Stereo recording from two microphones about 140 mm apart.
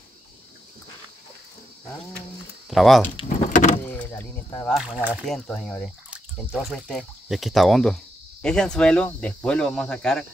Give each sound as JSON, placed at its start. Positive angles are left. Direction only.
{"t": 2.7, "sound": "speech", "side_deg": 0}
{"t": 3.5, "sound": "vehicle", "side_deg": 65}
{"t": 3.8, "sound": "power windows", "side_deg": 15}
{"t": 4.6, "sound": "speech", "side_deg": -5}
{"t": 5.2, "sound": "speech", "side_deg": 5}
{"t": 6.4, "sound": "speech", "side_deg": -5}